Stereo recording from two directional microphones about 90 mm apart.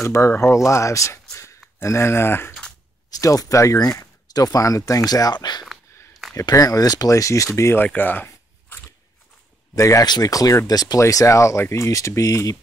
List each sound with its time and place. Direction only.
0.0 s speech: 30° left (ahead or behind)
1.3 s a sound: 35° left (ahead or behind)
3.1 s speech: 40° left (ahead or behind)
6.4 s speech: 40° left (ahead or behind)
7.8 s speech: 20° left (ahead or behind)
9.8 s speech: 35° left (ahead or behind)
10.0 s speech: 45° left (ahead or behind)